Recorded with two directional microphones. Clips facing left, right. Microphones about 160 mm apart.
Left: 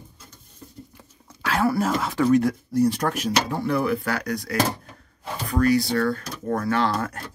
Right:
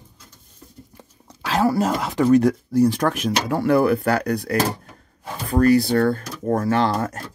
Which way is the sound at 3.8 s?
45° right (ahead or behind).